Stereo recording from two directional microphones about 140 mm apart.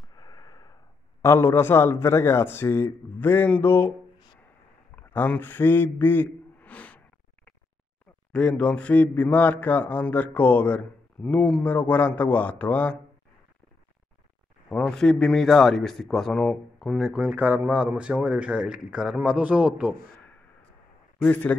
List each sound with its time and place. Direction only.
0.1 s a sound: 25° left (ahead or behind)
1.2 s speech: 20° left (ahead or behind)
4.9 s a man's voice: 10° left (ahead or behind)
8.3 s speech: 5° left (ahead or behind)
14.7 s a man's voice: 5° left (ahead or behind)
17.2 s speech: 10° right (ahead or behind)
21.2 s speech: 10° left (ahead or behind)